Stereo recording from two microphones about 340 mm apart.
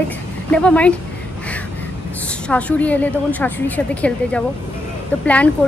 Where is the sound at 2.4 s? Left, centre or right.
Centre.